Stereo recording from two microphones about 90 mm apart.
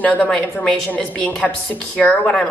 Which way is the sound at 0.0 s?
15° left (ahead or behind).